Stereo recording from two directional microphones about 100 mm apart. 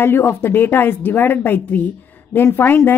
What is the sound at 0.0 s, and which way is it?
A woman's voice, 20° left (ahead or behind).